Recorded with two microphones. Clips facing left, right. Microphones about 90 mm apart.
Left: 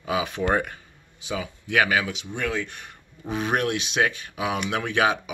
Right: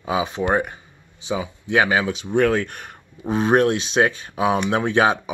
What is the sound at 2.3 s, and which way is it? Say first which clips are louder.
Speech: right 11 dB; 50° right (ahead or behind).